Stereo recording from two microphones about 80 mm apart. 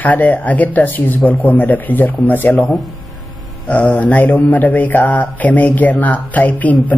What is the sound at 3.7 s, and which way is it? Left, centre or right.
Mantra, centre.